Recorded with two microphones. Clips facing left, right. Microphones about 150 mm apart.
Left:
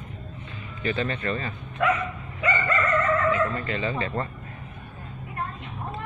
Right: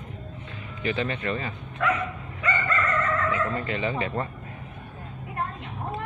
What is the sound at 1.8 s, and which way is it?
Bow-wow, 15° left (ahead or behind).